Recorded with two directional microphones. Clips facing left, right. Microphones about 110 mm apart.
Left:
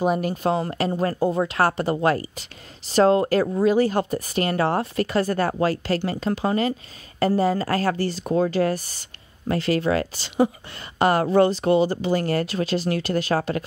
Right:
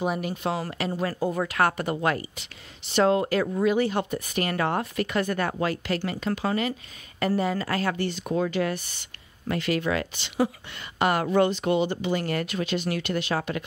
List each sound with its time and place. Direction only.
0.0 s speech: 40° left (ahead or behind)
1.3 s speech: 25° left (ahead or behind)